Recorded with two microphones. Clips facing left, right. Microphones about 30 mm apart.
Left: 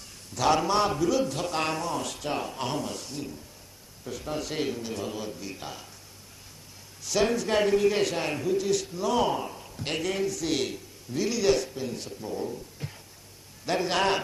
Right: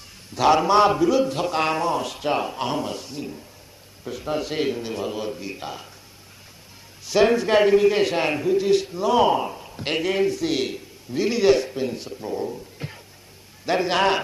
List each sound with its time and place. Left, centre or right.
0.3 s a man's voice: right
7.1 s a man's voice: right